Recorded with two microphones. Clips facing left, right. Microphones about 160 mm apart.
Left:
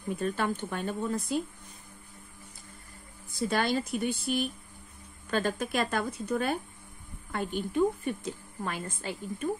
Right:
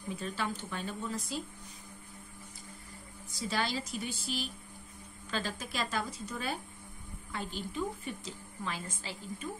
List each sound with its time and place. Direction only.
0.1 s a woman's voice: 55° left (ahead or behind)
3.3 s a woman's voice: 55° left (ahead or behind)